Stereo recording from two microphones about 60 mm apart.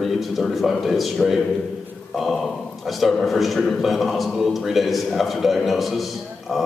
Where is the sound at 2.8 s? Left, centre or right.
Centre.